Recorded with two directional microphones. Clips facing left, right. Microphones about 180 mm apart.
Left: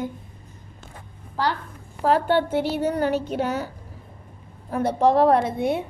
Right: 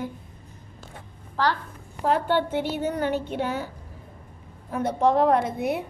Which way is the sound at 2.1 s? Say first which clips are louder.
Left 3 dB; 45° left (ahead or behind).